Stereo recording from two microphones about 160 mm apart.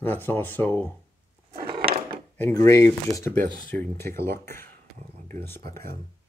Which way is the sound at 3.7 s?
65° right (ahead or behind).